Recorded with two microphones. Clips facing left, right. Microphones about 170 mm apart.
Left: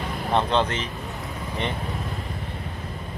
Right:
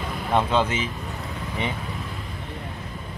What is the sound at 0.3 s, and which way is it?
Speech, 10° right (ahead or behind).